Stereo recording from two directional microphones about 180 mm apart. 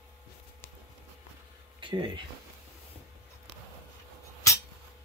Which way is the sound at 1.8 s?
25° right (ahead or behind).